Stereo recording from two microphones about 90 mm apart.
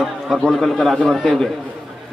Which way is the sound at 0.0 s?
Centre (ahead or behind).